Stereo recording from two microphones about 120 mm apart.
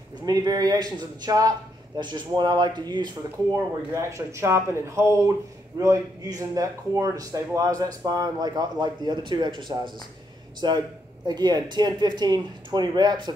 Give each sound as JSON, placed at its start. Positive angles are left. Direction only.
{"t": 0.2, "sound": "speech", "side_deg": -35}
{"t": 3.9, "sound": "speech", "side_deg": -25}
{"t": 10.6, "sound": "speech", "side_deg": -40}